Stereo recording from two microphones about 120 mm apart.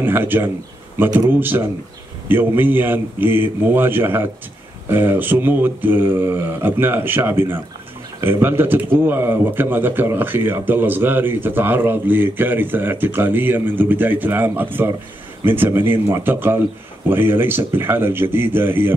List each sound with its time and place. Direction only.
0.0 s speech: 15° right (ahead or behind)
2.2 s speech: 15° right (ahead or behind)